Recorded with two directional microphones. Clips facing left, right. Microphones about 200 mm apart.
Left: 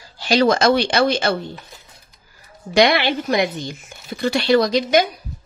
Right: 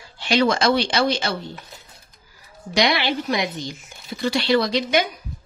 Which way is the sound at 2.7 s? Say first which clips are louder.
Left 5 dB; 55° left (ahead or behind).